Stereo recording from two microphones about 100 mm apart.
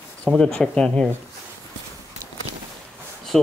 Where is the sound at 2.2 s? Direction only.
35° right (ahead or behind).